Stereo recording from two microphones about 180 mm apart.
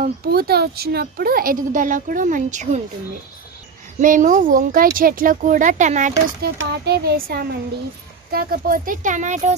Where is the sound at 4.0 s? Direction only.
45° right (ahead or behind).